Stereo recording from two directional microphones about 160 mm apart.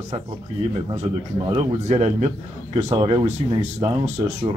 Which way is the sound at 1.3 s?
35° right (ahead or behind).